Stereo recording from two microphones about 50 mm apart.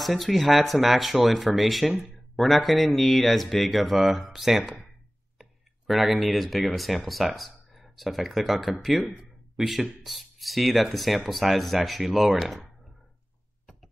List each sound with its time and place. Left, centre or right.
0.0 s speech: centre